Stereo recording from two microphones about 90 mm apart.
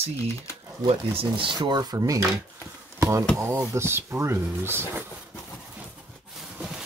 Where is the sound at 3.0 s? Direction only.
30° right (ahead or behind).